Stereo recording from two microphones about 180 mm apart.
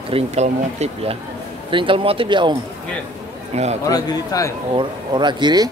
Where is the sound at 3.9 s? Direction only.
20° left (ahead or behind).